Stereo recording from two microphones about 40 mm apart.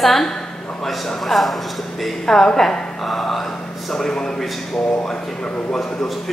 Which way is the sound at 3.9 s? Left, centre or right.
Centre.